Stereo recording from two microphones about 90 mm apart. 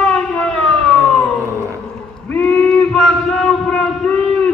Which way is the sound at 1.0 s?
10° left (ahead or behind).